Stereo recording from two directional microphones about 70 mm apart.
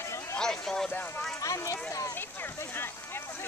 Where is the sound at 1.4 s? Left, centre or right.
Left.